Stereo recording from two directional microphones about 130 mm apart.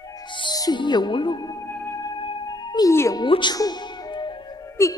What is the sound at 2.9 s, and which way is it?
Speech, 20° left (ahead or behind).